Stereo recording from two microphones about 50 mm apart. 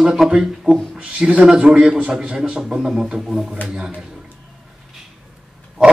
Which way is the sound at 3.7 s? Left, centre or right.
Centre.